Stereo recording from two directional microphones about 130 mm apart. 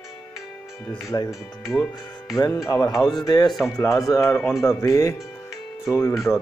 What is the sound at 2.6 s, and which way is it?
Speech, 30° left (ahead or behind).